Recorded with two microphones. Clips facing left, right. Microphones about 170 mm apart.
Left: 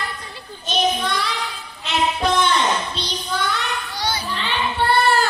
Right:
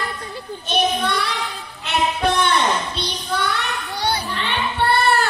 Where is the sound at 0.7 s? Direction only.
60° right (ahead or behind).